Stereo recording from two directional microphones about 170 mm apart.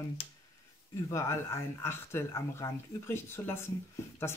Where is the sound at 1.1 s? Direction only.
15° left (ahead or behind).